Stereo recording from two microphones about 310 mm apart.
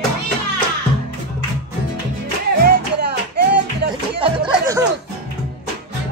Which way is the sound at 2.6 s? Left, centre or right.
Right.